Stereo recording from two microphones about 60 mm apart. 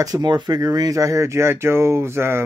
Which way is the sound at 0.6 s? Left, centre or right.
Right.